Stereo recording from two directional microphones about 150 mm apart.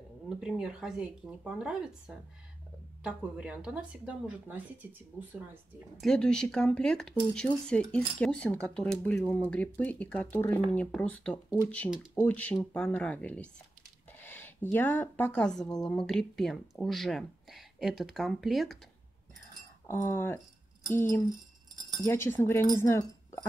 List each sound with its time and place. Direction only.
0.4 s speech: 5° right (ahead or behind)
5.9 s speech: 5° left (ahead or behind)
19.9 s speech: 15° left (ahead or behind)